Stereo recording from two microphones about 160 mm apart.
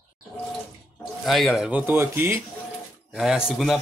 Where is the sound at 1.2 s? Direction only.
Centre (ahead or behind).